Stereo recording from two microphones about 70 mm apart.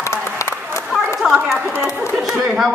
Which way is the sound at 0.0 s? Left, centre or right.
Left.